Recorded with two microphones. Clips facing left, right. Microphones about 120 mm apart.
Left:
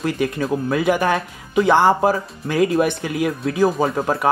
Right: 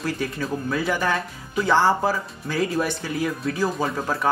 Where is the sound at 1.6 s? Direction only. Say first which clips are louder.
Left 5 dB; 15° left (ahead or behind).